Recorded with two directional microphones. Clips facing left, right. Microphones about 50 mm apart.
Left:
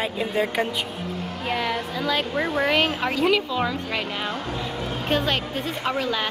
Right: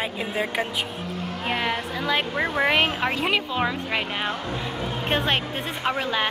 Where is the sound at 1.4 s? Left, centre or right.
Right.